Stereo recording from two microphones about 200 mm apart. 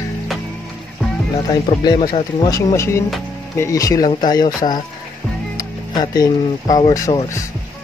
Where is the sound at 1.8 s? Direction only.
20° left (ahead or behind).